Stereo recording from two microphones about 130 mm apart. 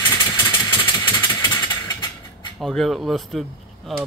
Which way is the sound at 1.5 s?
35° left (ahead or behind).